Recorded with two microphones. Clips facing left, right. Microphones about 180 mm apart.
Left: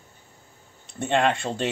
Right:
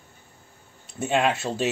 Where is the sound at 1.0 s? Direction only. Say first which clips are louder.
Left 1 dB; 5° right (ahead or behind).